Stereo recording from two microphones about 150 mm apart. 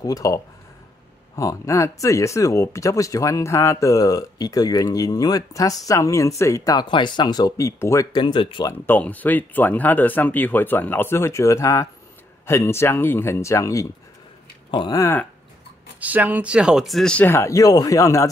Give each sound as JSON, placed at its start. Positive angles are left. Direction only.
{"t": 0.0, "sound": "speech", "side_deg": 25}
{"t": 8.6, "sound": "speech", "side_deg": 10}
{"t": 16.0, "sound": "speech", "side_deg": -10}